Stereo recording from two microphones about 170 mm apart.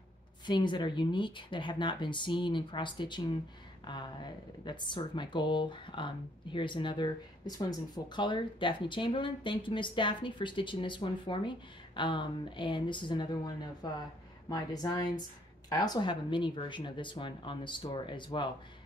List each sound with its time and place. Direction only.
0.5 s speech: 25° left (ahead or behind)